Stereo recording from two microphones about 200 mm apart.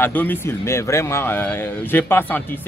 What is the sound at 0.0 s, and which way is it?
Speech, 10° left (ahead or behind).